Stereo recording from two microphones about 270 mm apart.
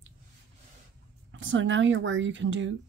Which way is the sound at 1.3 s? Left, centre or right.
Right.